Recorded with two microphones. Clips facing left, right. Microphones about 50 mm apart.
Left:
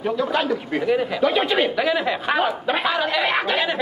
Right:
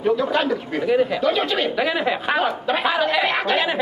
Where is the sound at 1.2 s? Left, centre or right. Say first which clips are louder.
Left 1 dB; centre.